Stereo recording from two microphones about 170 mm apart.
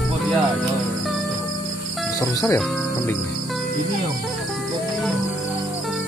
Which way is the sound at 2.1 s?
15° left (ahead or behind).